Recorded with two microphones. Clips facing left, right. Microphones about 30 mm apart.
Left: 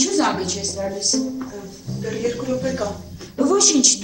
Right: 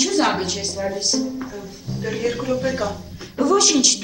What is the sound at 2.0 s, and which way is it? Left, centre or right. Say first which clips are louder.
A woman's voice: even; right.